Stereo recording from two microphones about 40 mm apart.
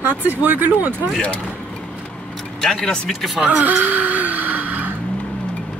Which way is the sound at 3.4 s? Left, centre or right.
Right.